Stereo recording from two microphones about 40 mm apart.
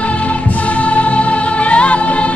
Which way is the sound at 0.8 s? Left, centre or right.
Left.